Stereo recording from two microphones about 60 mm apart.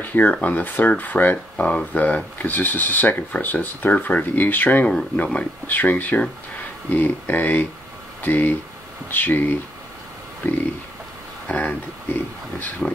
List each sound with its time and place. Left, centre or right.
0.0 s speech: left
1.6 s speech: centre; by 4.8 s left
5.1 s speech: left
11.4 s speech: left